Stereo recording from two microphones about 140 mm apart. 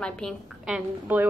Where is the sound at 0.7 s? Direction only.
10° right (ahead or behind).